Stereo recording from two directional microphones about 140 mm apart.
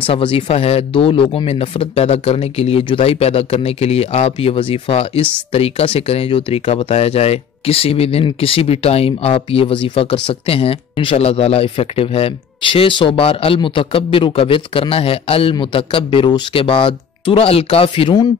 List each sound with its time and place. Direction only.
0.0 s speech: 40° left (ahead or behind)